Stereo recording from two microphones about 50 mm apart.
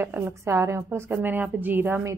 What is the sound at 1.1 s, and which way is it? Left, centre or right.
Speech, right.